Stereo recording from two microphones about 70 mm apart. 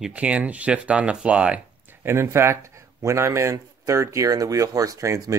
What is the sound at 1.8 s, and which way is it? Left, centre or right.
Speech, right.